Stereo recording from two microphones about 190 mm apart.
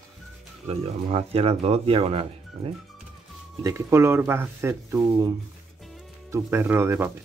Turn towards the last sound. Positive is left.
turn(degrees=-10)  # may be behind; listen again after turning